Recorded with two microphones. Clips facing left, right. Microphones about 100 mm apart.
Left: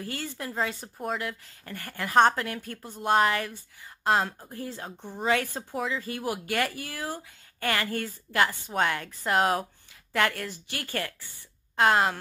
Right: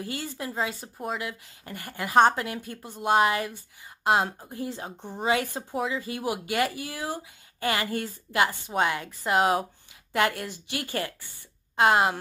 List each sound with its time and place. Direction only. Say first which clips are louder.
0.0 s speech: right 1 dB; 15° right (ahead or behind)
1.6 s speech: right 1 dB; 15° right (ahead or behind)
10.1 s speech: right 1 dB; 15° right (ahead or behind)